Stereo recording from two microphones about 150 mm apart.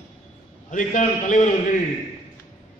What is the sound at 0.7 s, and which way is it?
Speech, 55° left (ahead or behind).